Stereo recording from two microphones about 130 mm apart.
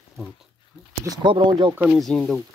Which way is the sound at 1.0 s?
35° right (ahead or behind).